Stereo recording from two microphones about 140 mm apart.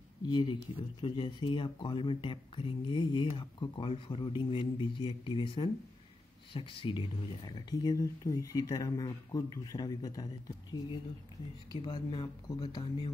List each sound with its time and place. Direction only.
0.3 s speech: 35° left (ahead or behind)